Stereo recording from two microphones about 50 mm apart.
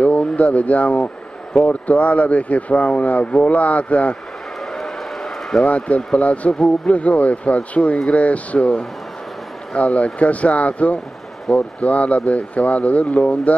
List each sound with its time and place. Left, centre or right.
0.0 s speech: left
4.6 s a sound: centre
5.6 s speech: left
8.5 s speech: centre
11.5 s speech: centre
11.8 s speech: left